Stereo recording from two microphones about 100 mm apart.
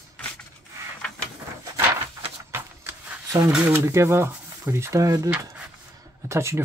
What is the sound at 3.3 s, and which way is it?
Speech, 30° right (ahead or behind).